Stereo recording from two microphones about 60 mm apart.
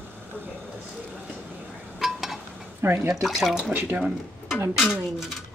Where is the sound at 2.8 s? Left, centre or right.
Right.